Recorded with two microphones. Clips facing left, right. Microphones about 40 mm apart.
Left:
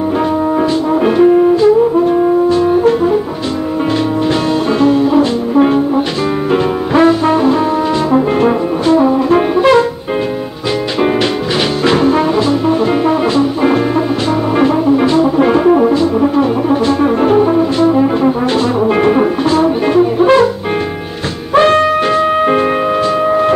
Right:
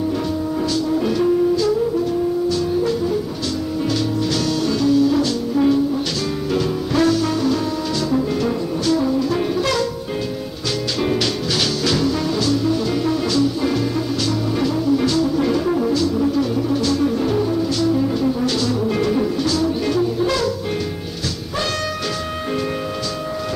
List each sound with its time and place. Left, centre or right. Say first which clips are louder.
0.6 s brass instrument: left 8 dB; left
1.6 s brass instrument: left 10 dB; left
4.3 s music: left 7 dB; left
6.5 s brass instrument: left 7 dB; left
11.8 s music: left 9 dB; left
16.2 s brass instrument: left 7 dB; left
18.9 s music: left 8 dB; left
21.5 s music: left 16 dB; left